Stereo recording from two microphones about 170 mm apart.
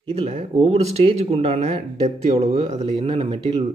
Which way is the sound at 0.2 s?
35° right (ahead or behind).